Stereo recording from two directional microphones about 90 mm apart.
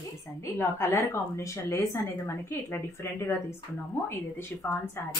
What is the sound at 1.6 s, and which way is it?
A woman's voice, 40° left (ahead or behind).